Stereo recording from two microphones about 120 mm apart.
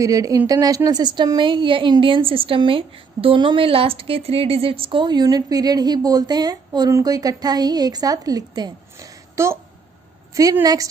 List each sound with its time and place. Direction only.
0.0 s speech: 30° right (ahead or behind)
8.9 s a sound: 25° right (ahead or behind)
10.6 s speech: 30° right (ahead or behind)